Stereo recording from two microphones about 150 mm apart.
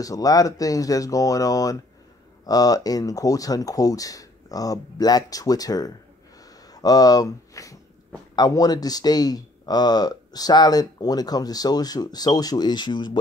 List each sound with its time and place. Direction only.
0.0 s speech: 25° left (ahead or behind)